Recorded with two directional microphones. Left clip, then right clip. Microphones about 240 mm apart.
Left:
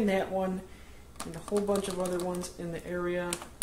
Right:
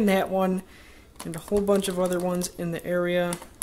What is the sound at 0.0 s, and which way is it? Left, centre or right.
Speech, right.